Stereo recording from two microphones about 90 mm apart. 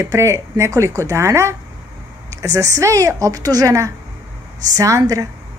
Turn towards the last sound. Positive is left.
turn(degrees=-40)  # may be behind; listen again after turning